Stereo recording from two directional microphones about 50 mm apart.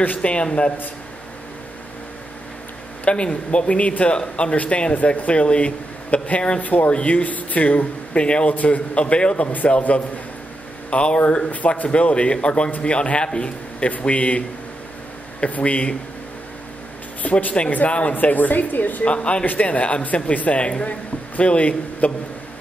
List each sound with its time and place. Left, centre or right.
0.2 s speech: left
3.1 s speech: left
15.4 s speech: left
17.2 s a woman's voice: left
19.1 s speech: left
19.4 s speech: left